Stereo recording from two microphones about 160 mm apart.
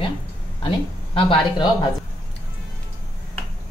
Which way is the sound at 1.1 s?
30° left (ahead or behind).